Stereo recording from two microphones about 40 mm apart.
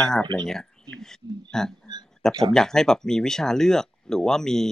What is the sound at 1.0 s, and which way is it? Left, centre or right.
Speech, centre.